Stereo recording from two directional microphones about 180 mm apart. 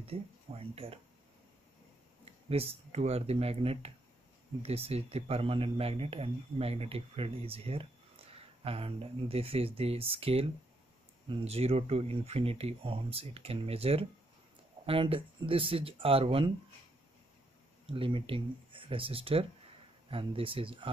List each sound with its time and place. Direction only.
0.0 s speech: 35° right (ahead or behind)
2.5 s speech: 35° right (ahead or behind)
17.8 s speech: 30° right (ahead or behind)